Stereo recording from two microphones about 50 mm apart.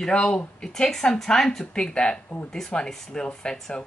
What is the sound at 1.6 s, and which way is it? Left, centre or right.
Speech, centre.